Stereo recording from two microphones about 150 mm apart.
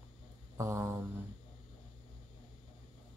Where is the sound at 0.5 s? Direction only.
20° right (ahead or behind).